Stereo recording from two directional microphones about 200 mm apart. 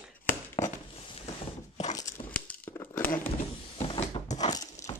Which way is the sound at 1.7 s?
35° left (ahead or behind).